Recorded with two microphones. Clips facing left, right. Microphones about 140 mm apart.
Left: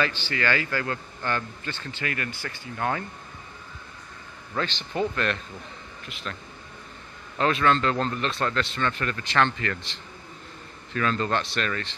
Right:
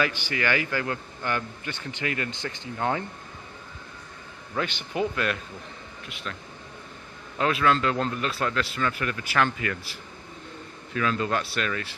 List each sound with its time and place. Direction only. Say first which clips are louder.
0.0 s a man's voice: even; 15° right (ahead or behind)
4.6 s a man's voice: even; 10° right (ahead or behind)
7.3 s a man's voice: left 1 dB; 5° right (ahead or behind)